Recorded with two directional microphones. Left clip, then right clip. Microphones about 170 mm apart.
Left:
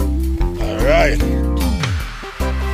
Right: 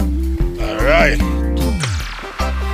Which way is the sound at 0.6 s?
20° left (ahead or behind).